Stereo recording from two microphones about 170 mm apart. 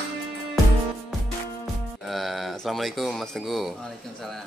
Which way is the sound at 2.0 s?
Centre (ahead or behind).